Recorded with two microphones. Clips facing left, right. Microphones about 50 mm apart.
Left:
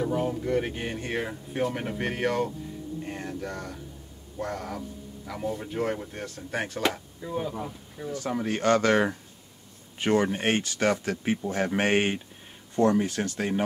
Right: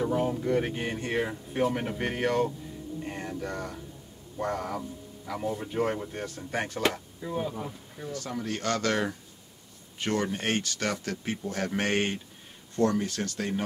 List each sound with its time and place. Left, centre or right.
0.0 s speech: centre
8.1 s speech: left